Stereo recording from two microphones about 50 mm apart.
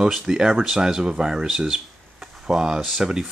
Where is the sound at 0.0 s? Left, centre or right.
Centre.